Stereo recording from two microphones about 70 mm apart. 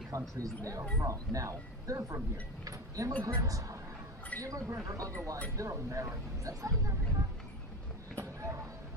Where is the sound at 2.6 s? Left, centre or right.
Right.